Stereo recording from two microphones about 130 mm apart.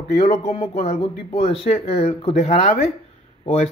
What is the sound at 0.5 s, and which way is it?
A man's voice, 55° left (ahead or behind).